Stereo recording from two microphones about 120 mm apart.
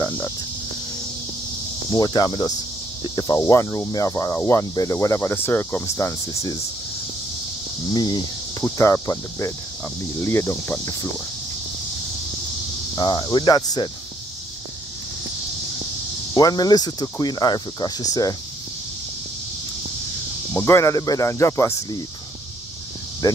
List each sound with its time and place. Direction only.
1.9 s cricket: 35° left (ahead or behind)
3.0 s speech: 35° left (ahead or behind)
7.9 s speech: 35° left (ahead or behind)
8.6 s speech: 25° left (ahead or behind)
12.9 s cricket: 35° left (ahead or behind)
16.3 s cricket: 35° left (ahead or behind)
20.5 s speech: 25° left (ahead or behind)
23.2 s speech: 30° left (ahead or behind)